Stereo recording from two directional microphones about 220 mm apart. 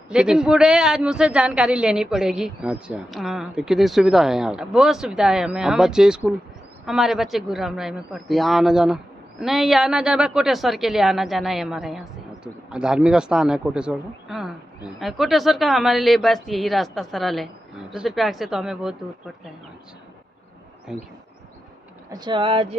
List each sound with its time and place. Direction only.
0.1 s a man's voice: 5° right (ahead or behind)
20.9 s a man's voice: centre (ahead or behind)
22.1 s speech: 20° right (ahead or behind)